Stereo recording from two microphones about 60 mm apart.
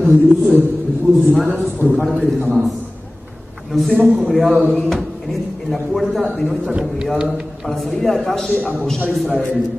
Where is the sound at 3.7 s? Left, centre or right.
Centre.